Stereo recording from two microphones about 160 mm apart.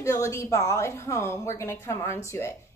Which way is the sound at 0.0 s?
20° left (ahead or behind).